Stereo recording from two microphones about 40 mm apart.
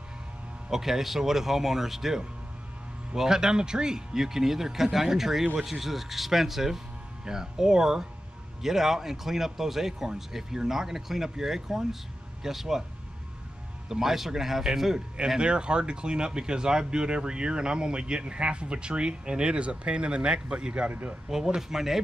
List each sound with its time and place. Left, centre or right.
0.7 s speech: centre
13.8 s speech: centre
21.5 s speech: centre